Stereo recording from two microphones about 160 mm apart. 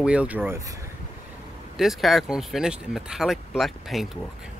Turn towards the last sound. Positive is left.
turn(degrees=0)  # may be behind; listen again after turning